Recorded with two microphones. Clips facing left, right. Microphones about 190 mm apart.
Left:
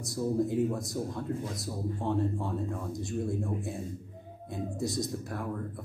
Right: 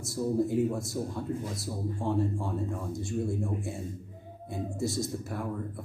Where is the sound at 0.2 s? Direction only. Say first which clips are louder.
Right 1 dB; centre (ahead or behind).